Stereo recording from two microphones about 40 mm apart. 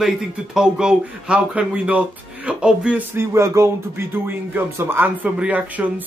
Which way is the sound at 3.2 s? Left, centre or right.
Right.